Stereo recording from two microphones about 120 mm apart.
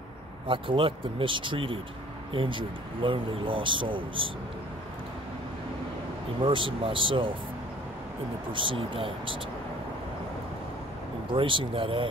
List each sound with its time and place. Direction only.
0.5 s speech: 45° right (ahead or behind)
6.4 s speech: 45° right (ahead or behind)
8.5 s speech: 45° right (ahead or behind)
11.3 s speech: 45° right (ahead or behind)